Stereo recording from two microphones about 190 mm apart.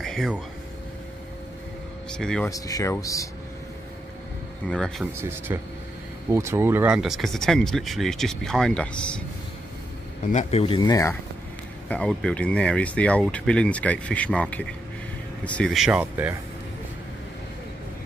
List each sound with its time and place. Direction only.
0.0 s a sound: centre (ahead or behind)
2.0 s speech: 5° left (ahead or behind)
2.5 s speech: 20° left (ahead or behind)
4.6 s speech: 5° left (ahead or behind)
5.1 s a man's voice: 15° right (ahead or behind); by 9.2 s 5° left (ahead or behind)
10.3 s speech: 30° left (ahead or behind)
10.8 s speech: 20° left (ahead or behind)
11.9 s speech: 5° left (ahead or behind)